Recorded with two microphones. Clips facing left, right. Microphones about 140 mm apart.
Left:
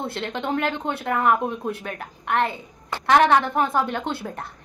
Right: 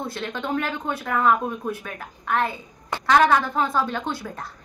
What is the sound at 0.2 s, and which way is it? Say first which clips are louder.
A woman's voice: left 2 dB; 20° left (ahead or behind).